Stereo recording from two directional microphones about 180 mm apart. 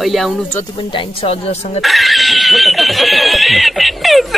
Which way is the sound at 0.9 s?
30° left (ahead or behind).